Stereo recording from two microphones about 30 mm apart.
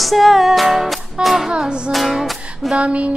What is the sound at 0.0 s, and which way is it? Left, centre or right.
Music, centre.